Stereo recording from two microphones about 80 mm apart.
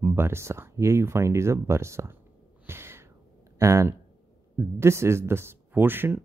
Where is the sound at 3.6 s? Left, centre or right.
Right.